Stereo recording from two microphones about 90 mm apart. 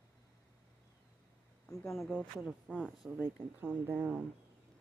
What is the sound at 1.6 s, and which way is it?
Speech, 5° left (ahead or behind).